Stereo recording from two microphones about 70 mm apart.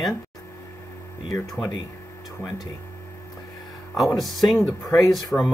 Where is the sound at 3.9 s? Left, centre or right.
Centre.